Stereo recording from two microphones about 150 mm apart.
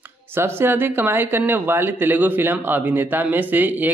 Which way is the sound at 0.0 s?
15° right (ahead or behind).